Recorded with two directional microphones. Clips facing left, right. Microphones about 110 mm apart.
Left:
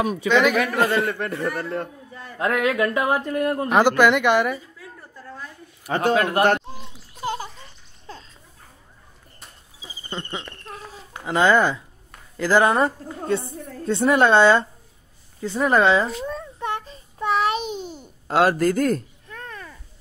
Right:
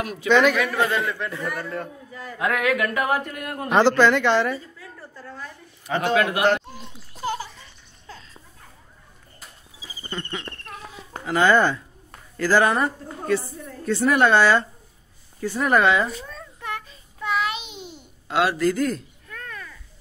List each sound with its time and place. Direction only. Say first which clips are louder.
0.3 s a man's voice: right 2 dB; 5° left (ahead or behind)
1.0 s a man's voice: left 3 dB; 55° left (ahead or behind)
2.3 s a woman's voice: left 1 dB; 30° left (ahead or behind)
3.7 s a woman's voice: right 1 dB; 15° left (ahead or behind)
5.9 s a man's voice: left 2 dB; 40° left (ahead or behind)
9.8 s a sound: even; 25° left (ahead or behind)
11.2 s a woman's voice: even; 20° left (ahead or behind)
16.5 s child singing: left 5 dB; 30° left (ahead or behind); by 19.0 s 45° left (ahead or behind)
19.2 s babbling: left 1 dB; 25° left (ahead or behind)